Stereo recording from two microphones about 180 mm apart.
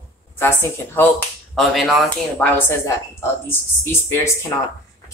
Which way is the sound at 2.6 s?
15° left (ahead or behind).